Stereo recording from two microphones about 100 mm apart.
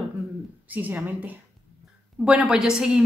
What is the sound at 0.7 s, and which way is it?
Speech, 15° right (ahead or behind).